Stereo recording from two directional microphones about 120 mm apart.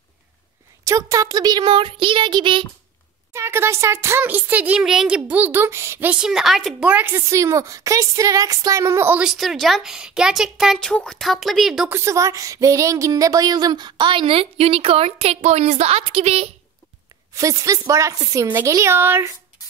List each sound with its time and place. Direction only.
0.8 s speech: 25° right (ahead or behind); by 2.6 s 40° right (ahead or behind)
3.3 s speech: 20° right (ahead or behind); by 6.9 s centre (ahead or behind)
6.9 s a woman's voice: 15° right (ahead or behind)
9.2 s a woman's voice: 5° right (ahead or behind)
11.9 s speech: 25° right (ahead or behind); by 16.4 s 55° right (ahead or behind)
17.3 s a woman's voice: 25° right (ahead or behind)